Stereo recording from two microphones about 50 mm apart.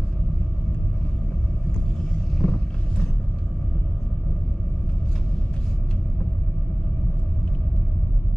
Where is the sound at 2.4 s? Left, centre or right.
Centre.